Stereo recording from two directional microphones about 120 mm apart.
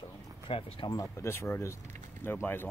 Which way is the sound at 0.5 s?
50° left (ahead or behind).